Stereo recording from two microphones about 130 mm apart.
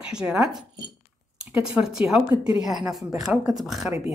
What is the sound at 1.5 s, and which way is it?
Speech, 5° right (ahead or behind).